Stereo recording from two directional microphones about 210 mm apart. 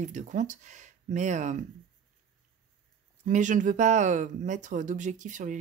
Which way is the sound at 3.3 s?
35° right (ahead or behind).